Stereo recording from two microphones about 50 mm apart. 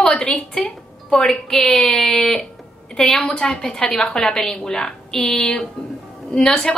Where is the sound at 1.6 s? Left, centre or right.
Left.